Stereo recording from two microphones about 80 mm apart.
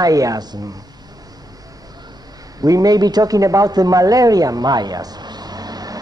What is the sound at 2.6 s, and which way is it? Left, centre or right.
Speech, right.